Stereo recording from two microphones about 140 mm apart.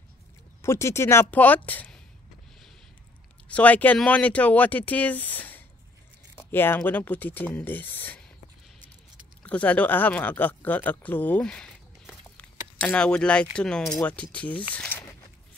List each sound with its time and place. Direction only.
0.6 s speech: 20° left (ahead or behind)
3.4 s speech: 10° left (ahead or behind)
9.4 s speech: 10° left (ahead or behind)
14.7 s a sound: 10° left (ahead or behind)